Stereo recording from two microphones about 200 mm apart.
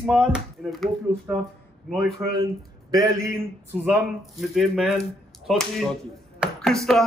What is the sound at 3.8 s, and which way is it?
A man's voice, centre (ahead or behind).